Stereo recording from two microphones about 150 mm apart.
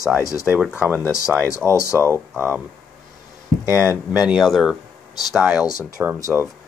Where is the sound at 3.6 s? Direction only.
15° right (ahead or behind).